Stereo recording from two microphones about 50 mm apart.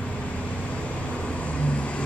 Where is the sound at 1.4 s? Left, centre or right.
Left.